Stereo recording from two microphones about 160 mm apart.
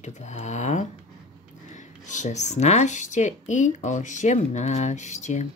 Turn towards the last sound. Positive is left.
turn(degrees=45)  # may be behind; listen again after turning